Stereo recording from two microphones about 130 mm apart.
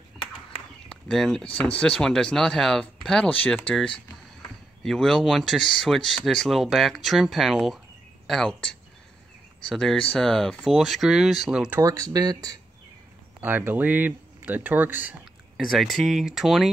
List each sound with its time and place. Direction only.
0.8 s speech: 5° left (ahead or behind)
11.8 s speech: 25° right (ahead or behind)
13.4 s speech: 15° right (ahead or behind)
15.5 s speech: centre (ahead or behind)